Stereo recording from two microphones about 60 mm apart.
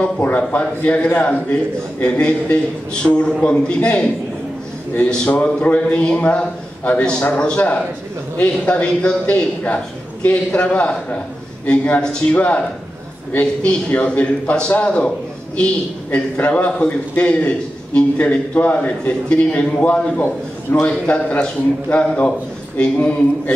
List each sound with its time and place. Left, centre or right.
0.0 s a man's voice: left
5.1 s a man's voice: left
20.7 s a man's voice: left
21.1 s a man's voice: left